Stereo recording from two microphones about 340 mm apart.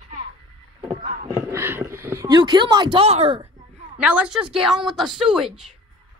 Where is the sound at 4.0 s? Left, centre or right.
Centre.